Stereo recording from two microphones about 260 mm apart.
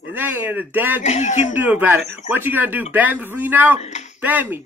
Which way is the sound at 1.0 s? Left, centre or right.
Left.